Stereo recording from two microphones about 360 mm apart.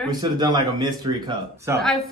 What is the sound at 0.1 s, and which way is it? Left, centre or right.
A man's voice, centre.